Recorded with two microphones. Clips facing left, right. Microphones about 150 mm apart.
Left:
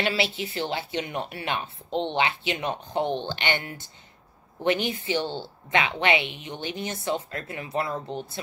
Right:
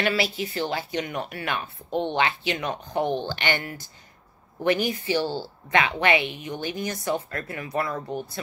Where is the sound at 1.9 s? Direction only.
10° right (ahead or behind).